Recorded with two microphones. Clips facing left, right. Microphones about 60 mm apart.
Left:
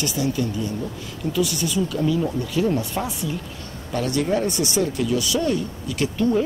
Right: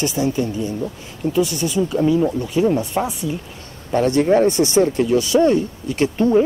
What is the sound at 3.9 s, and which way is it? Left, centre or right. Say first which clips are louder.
Speech: right 7 dB; right.